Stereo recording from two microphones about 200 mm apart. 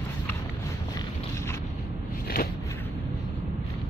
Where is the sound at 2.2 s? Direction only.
50° left (ahead or behind).